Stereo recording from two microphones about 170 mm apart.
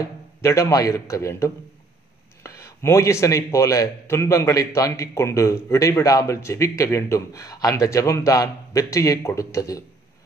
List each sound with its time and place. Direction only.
0.0 s a man's voice: 20° left (ahead or behind)